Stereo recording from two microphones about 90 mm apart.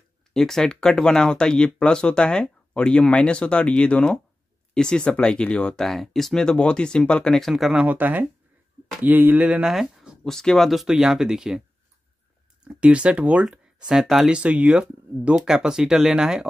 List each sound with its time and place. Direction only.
0.3 s speech: 5° left (ahead or behind)
7.8 s speech: 20° right (ahead or behind)
9.7 s speech: 5° right (ahead or behind)
12.6 s speech: 10° right (ahead or behind)
13.8 s speech: 5° right (ahead or behind)